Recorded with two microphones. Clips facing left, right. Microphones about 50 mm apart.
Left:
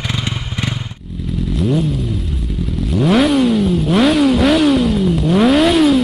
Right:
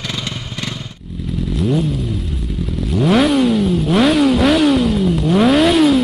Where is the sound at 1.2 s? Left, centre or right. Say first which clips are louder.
Left 1 dB; centre.